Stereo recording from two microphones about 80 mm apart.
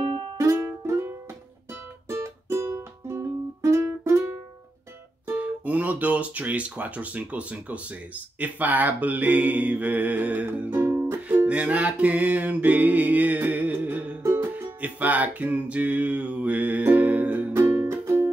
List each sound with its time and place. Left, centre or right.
0.4 s music: right
5.2 s speech: right
8.4 s mantra: right
11.2 s music: centre
14.2 s music: right
14.8 s mantra: centre
17.5 s music: right